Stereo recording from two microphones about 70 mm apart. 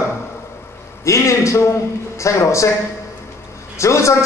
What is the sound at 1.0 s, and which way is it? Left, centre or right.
A man's voice, left.